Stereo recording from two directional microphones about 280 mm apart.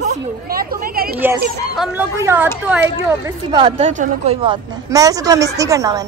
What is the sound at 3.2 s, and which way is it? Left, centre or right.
Speech, centre.